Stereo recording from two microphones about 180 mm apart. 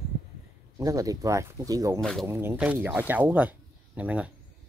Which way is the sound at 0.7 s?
20° right (ahead or behind).